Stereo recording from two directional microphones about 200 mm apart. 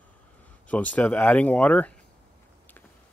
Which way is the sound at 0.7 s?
5° left (ahead or behind).